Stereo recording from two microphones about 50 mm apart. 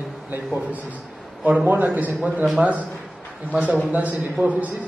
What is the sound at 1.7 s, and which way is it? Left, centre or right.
A man's voice, right.